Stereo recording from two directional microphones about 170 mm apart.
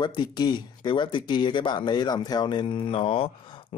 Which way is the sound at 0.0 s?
25° left (ahead or behind).